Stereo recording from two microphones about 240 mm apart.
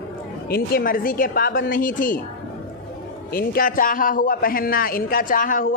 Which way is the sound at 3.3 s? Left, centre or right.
Left.